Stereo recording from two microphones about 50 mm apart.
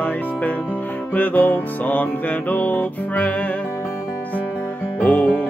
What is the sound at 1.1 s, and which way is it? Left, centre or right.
Music, left.